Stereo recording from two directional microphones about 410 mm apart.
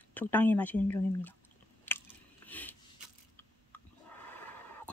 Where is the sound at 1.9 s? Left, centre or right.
Centre.